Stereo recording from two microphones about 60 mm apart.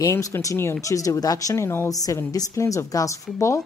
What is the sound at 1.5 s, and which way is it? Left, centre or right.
Speech, left.